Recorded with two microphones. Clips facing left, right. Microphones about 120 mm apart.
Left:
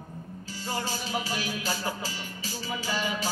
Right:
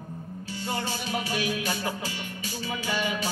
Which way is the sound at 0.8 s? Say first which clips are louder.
Right 1 dB; 35° left (ahead or behind).